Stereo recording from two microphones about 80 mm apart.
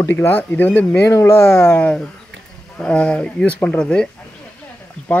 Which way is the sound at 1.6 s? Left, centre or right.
Centre.